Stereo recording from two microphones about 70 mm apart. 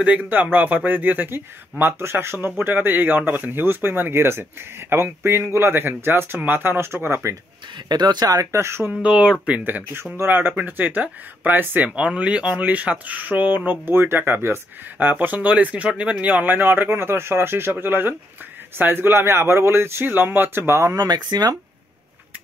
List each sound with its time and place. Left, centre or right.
0.0 s speech: right
7.9 s speech: right
8.5 s speech: right
8.9 s speech: centre
10.1 s speech: right
21.0 s speech: right